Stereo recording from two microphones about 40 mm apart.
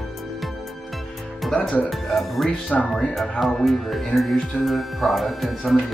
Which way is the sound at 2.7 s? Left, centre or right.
Centre.